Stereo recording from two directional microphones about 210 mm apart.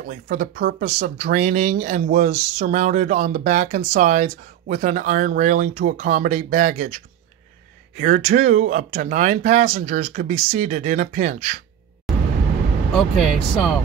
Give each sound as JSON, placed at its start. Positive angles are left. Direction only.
{"t": 0.0, "sound": "speech", "side_deg": -40}
{"t": 8.0, "sound": "speech", "side_deg": -35}
{"t": 12.1, "sound": "vehicle", "side_deg": 0}
{"t": 12.9, "sound": "speech", "side_deg": 0}